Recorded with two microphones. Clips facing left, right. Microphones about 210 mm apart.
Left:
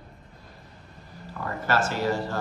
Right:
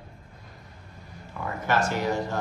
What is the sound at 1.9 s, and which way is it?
Speech, 15° right (ahead or behind).